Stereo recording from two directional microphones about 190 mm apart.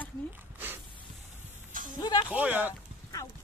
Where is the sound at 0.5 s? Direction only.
10° right (ahead or behind).